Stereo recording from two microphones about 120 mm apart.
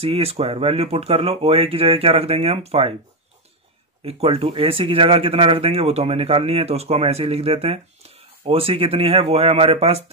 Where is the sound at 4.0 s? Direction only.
55° right (ahead or behind).